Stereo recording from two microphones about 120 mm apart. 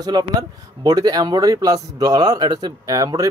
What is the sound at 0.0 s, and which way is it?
Speech, 35° right (ahead or behind).